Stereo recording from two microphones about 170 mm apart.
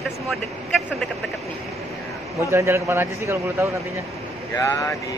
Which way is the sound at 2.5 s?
15° right (ahead or behind).